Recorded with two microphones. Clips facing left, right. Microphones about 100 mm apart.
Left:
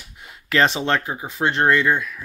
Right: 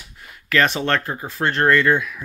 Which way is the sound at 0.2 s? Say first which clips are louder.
Even; 25° left (ahead or behind).